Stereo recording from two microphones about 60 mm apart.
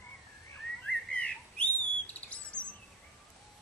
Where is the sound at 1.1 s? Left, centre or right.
Centre.